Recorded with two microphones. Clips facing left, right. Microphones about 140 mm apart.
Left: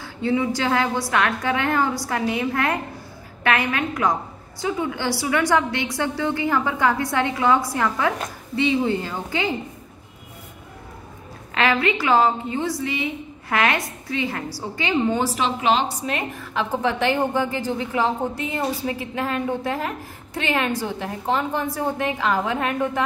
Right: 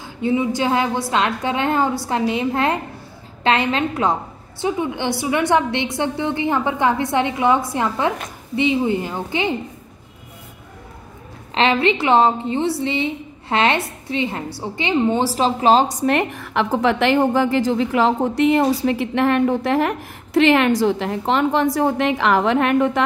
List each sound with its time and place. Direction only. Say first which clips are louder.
0.0 s a woman's voice: right 2 dB; 15° right (ahead or behind)
11.5 s a woman's voice: right 3 dB; 25° right (ahead or behind)
15.3 s a woman's voice: right 6 dB; 35° right (ahead or behind)
16.1 s a woman's voice: right 8 dB; 70° right (ahead or behind)